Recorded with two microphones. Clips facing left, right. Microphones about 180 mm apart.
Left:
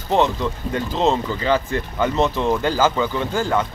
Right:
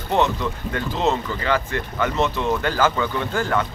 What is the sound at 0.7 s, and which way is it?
Speech, 25° left (ahead or behind).